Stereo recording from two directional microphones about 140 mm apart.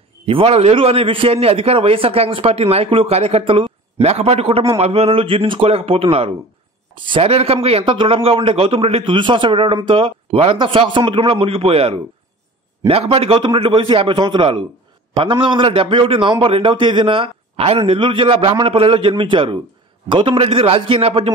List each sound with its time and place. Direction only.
0.3 s a man's voice: 45° right (ahead or behind)